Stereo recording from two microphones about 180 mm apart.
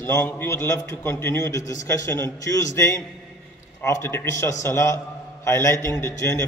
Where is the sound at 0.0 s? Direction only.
15° left (ahead or behind).